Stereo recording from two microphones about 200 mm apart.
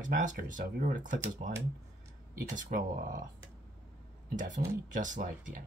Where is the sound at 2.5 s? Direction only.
40° right (ahead or behind).